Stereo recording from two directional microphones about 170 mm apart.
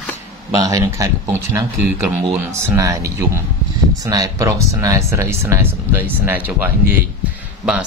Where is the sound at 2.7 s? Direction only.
20° right (ahead or behind).